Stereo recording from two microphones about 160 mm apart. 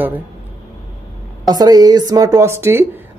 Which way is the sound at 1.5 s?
25° right (ahead or behind).